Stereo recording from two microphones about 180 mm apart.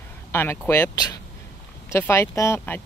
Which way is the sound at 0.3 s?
15° left (ahead or behind).